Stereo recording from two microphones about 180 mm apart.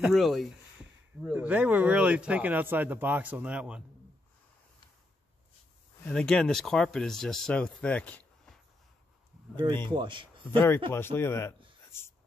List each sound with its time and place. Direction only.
0.0 s speech: centre (ahead or behind)
6.0 s speech: 5° left (ahead or behind)
9.6 s speech: 25° right (ahead or behind)
10.9 s speech: 15° left (ahead or behind)